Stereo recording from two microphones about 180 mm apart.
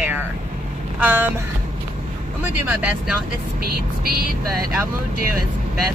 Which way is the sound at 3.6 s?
55° right (ahead or behind).